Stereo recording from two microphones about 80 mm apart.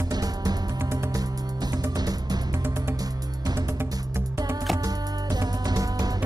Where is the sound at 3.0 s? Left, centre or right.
Right.